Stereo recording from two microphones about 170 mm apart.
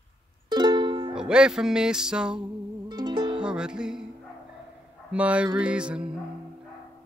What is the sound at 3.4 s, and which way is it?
Music, 5° right (ahead or behind).